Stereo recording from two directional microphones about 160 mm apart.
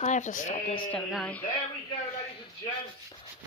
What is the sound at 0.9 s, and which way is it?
Speech, 5° left (ahead or behind).